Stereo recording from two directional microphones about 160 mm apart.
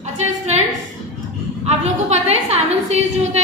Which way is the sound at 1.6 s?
45° right (ahead or behind).